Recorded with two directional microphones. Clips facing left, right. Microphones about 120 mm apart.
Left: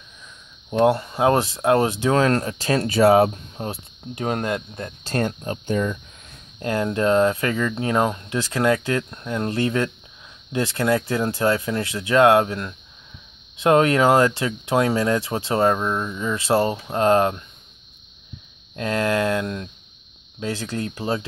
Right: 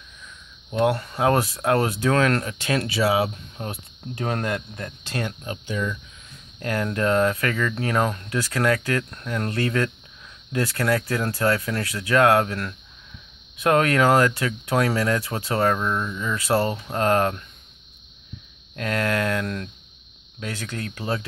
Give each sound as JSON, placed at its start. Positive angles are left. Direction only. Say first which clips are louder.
{"t": 0.7, "sound": "speech", "louder": "left 4 dB", "side_deg": 30}
{"t": 3.0, "sound": "speech", "louder": "left 8 dB", "side_deg": 50}
{"t": 3.5, "sound": "speech", "louder": "left 3 dB", "side_deg": 30}
{"t": 5.0, "sound": "speech", "louder": "left 6 dB", "side_deg": 40}
{"t": 6.6, "sound": "speech", "louder": "left 3 dB", "side_deg": 25}
{"t": 18.8, "sound": "speech", "louder": "left 3 dB", "side_deg": 25}